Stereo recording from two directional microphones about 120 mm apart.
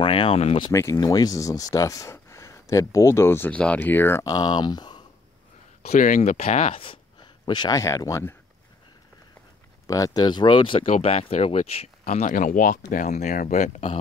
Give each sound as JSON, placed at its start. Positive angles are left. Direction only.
{"t": 0.0, "sound": "speech", "side_deg": 45}
{"t": 0.7, "sound": "speech", "side_deg": 25}
{"t": 4.3, "sound": "speech", "side_deg": 35}
{"t": 5.8, "sound": "speech", "side_deg": 75}
{"t": 6.7, "sound": "a sound", "side_deg": 45}
{"t": 7.7, "sound": "speech", "side_deg": 30}
{"t": 9.8, "sound": "speech", "side_deg": 30}
{"t": 10.9, "sound": "speech", "side_deg": 55}